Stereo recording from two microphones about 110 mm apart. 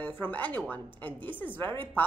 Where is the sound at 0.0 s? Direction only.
15° left (ahead or behind).